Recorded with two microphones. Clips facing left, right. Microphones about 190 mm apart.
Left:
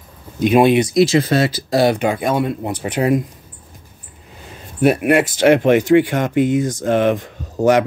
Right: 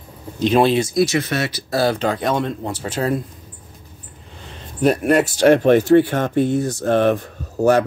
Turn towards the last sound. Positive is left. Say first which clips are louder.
# left 1 dB
turn(degrees=15)  # may be behind; listen again after turning